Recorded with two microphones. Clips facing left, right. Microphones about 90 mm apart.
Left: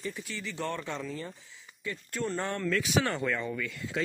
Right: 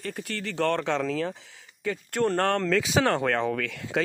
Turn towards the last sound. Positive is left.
turn(degrees=-90)